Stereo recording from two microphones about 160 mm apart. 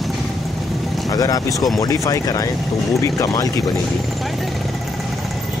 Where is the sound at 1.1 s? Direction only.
20° left (ahead or behind).